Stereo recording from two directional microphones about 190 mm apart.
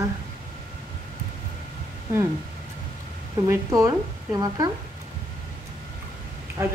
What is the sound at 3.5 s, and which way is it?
Speech, 15° right (ahead or behind).